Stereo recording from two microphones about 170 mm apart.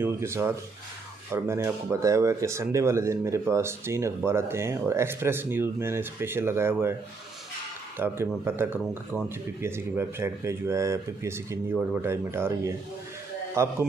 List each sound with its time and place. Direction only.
0.0 s speech: 15° right (ahead or behind)
8.0 s speech: 15° right (ahead or behind)